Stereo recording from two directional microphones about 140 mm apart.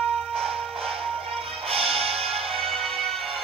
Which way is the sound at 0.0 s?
Centre (ahead or behind).